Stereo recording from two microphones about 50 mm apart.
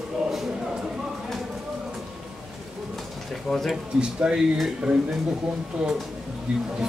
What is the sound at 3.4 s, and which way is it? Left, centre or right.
Speech, centre.